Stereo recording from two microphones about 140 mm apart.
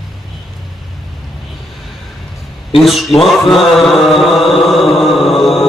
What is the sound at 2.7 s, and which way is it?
Mantra, centre (ahead or behind).